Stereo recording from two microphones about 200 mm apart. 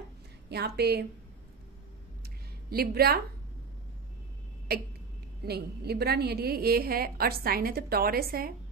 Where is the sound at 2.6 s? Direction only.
50° right (ahead or behind).